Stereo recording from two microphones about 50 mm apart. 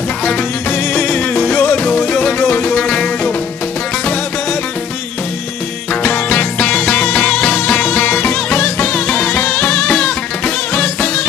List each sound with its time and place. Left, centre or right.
0.2 s music: left
1.3 s music: left
1.8 s music: left
6.2 s music: left
7.7 s music: left
9.0 s music: left
9.8 s music: centre
10.7 s music: left